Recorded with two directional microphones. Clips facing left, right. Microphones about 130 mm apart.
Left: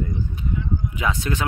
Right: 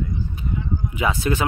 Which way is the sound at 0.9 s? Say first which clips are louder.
Right 5 dB; 5° right (ahead or behind).